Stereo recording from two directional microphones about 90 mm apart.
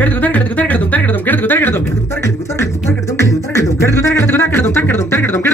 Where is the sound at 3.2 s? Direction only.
35° left (ahead or behind).